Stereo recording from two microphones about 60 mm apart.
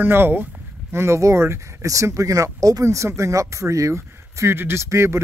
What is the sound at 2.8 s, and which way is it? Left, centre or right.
Speech, right.